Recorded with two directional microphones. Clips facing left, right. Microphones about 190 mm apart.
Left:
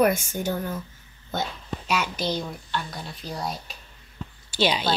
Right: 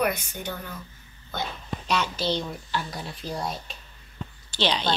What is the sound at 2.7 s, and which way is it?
A woman's voice, centre (ahead or behind).